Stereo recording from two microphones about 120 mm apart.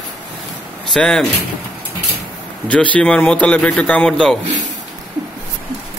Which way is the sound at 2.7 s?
10° left (ahead or behind).